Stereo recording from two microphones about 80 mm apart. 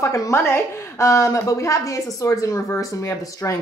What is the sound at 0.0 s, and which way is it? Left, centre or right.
Speech, left.